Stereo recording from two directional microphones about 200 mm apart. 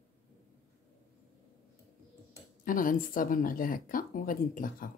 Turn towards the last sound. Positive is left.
turn(degrees=45)  # may be behind; listen again after turning